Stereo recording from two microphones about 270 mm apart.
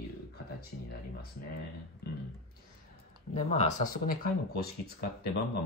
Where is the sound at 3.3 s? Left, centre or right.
Left.